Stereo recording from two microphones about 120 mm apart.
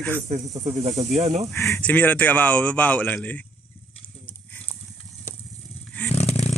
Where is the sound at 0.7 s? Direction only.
65° right (ahead or behind).